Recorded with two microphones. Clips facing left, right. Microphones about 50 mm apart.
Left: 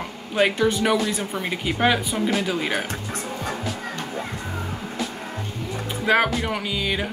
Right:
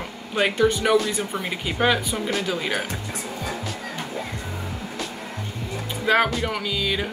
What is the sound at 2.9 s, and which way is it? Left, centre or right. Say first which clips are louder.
Music: left 1 dB; left.